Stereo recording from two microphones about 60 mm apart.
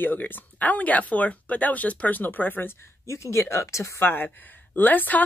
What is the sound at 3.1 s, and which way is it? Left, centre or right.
Speech, left.